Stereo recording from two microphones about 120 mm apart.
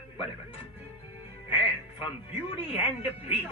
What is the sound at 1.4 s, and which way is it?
Speech, 50° left (ahead or behind).